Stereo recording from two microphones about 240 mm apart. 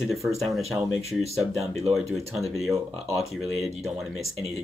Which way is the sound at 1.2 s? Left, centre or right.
Right.